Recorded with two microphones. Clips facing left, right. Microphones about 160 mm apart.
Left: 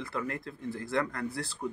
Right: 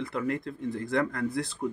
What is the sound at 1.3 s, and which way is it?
Speech, 20° right (ahead or behind).